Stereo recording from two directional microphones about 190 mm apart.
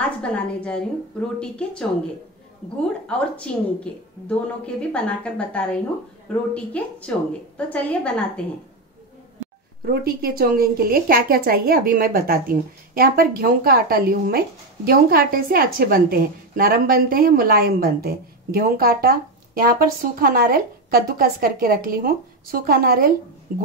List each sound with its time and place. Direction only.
0.2 s a woman's voice: 5° left (ahead or behind)
3.1 s a woman's voice: 5° left (ahead or behind)
10.0 s a woman's voice: 50° right (ahead or behind)